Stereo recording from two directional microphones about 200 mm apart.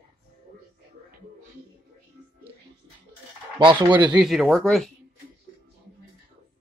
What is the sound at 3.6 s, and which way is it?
Speech, 25° right (ahead or behind).